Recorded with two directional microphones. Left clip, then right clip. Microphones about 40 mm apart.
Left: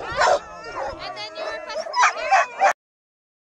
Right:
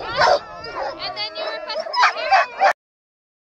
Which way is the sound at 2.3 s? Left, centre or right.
Left.